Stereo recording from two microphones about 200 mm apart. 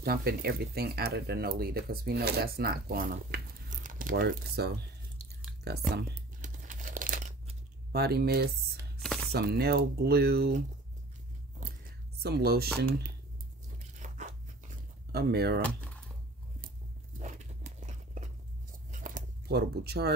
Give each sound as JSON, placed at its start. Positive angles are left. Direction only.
{"t": 0.0, "sound": "speech", "side_deg": -50}
{"t": 6.4, "sound": "crumpling", "side_deg": -40}
{"t": 7.9, "sound": "speech", "side_deg": -50}
{"t": 9.0, "sound": "chopping", "side_deg": 5}
{"t": 9.3, "sound": "speech", "side_deg": -50}
{"t": 12.2, "sound": "speech", "side_deg": -50}
{"t": 13.9, "sound": "tearing", "side_deg": -40}
{"t": 15.1, "sound": "speech", "side_deg": -50}
{"t": 17.2, "sound": "a sound", "side_deg": -40}
{"t": 18.9, "sound": "keys jangling", "side_deg": -40}